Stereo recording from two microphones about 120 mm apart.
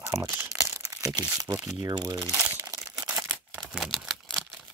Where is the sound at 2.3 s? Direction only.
15° right (ahead or behind).